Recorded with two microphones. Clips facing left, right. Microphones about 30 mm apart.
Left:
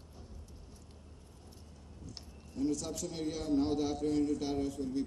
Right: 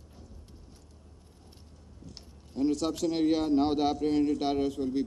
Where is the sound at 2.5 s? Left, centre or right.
Right.